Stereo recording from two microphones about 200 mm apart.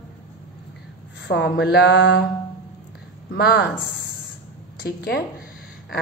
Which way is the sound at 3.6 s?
55° left (ahead or behind).